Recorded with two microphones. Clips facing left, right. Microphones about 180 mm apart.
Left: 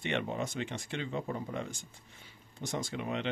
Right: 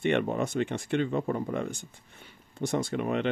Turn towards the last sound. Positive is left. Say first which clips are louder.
# right 7 dB
turn(degrees=-55)  # may be behind; listen again after turning